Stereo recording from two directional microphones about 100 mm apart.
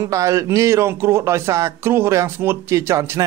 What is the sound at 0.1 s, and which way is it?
Speech, 35° right (ahead or behind).